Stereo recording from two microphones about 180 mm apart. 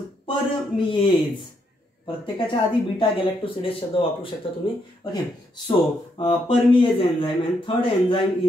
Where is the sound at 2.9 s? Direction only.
30° left (ahead or behind).